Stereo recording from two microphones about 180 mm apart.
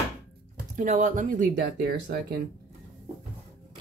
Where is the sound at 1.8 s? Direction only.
65° right (ahead or behind).